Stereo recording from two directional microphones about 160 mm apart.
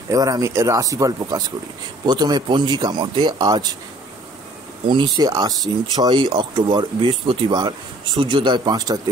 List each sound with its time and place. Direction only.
0.1 s speech: 20° right (ahead or behind)
4.8 s speech: 25° right (ahead or behind)